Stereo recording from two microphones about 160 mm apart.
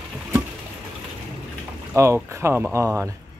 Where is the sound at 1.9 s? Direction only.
15° right (ahead or behind).